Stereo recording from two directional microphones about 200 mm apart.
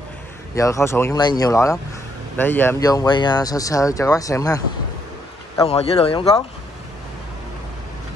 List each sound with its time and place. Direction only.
0.6 s speech: 15° left (ahead or behind)
5.7 s speech: 30° left (ahead or behind)